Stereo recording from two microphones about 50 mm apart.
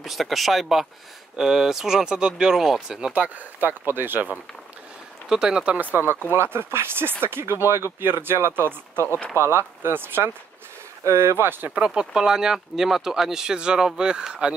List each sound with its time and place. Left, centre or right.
0.0 s speech: centre
1.3 s speech: centre
2.5 s speech: centre
3.1 s speech: right
5.3 s speech: centre
5.8 s speech: right
6.3 s speech: right
11.1 s speech: right
11.3 s speech: right
11.8 s speech: centre